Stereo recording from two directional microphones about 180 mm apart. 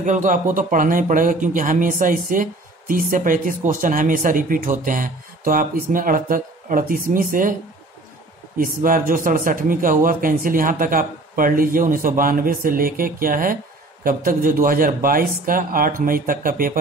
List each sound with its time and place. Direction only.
0.0 s speech: 45° right (ahead or behind)
8.5 s speech: 50° right (ahead or behind)